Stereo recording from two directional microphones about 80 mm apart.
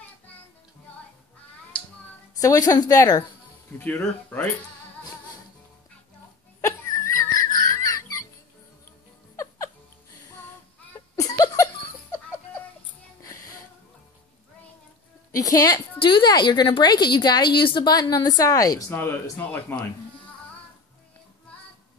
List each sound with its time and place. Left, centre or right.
2.4 s a woman's voice: left
3.8 s speech: left
6.6 s laughter: left
11.1 s laughter: left
13.2 s music: left
15.3 s a woman's voice: left
16.0 s a woman's voice: left
18.1 s a woman's voice: left
18.9 s speech: left